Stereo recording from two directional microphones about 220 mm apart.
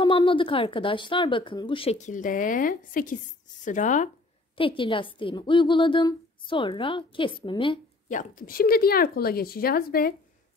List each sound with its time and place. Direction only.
0.0 s a woman's voice: 25° left (ahead or behind)
4.6 s a woman's voice: 25° left (ahead or behind)
8.1 s speech: 35° left (ahead or behind)